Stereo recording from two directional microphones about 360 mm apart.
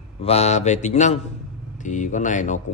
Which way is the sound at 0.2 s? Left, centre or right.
Centre.